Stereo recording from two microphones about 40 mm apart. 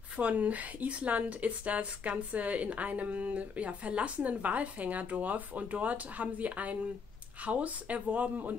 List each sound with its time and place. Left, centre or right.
0.2 s a woman's voice: right